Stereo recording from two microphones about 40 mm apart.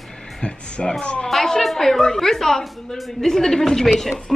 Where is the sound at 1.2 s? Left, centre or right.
Centre.